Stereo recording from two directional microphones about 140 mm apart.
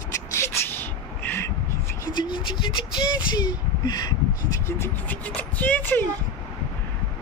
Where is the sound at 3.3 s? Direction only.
30° left (ahead or behind).